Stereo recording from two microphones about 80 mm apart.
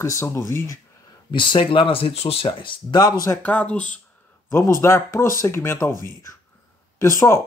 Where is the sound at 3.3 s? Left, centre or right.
Centre.